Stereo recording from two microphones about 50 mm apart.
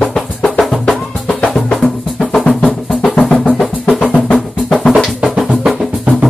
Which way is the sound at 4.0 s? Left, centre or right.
Left.